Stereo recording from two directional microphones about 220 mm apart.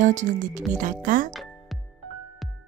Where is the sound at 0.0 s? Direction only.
35° right (ahead or behind).